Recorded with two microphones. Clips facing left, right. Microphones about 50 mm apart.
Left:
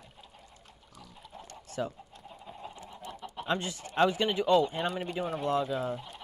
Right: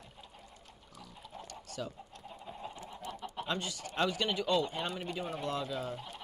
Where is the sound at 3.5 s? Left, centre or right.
Left; by 5.4 s centre.